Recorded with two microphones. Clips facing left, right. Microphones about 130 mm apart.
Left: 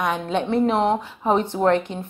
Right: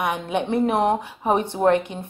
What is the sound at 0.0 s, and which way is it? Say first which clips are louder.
A woman's voice: left 1 dB; 15° right (ahead or behind).